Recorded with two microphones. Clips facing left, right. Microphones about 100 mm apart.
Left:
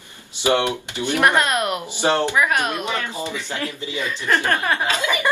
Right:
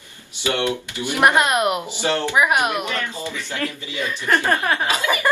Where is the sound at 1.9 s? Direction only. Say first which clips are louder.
Left 3 dB; 20° left (ahead or behind).